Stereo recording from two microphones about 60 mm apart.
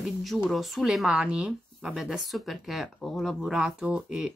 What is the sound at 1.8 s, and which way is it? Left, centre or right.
Speech, centre.